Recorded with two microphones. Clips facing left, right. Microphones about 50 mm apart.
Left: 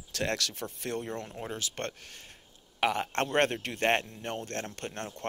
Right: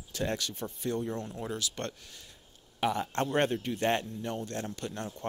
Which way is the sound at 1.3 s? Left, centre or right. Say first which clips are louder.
Right 1 dB; left.